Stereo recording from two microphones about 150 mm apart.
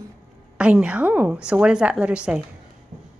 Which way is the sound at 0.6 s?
10° right (ahead or behind).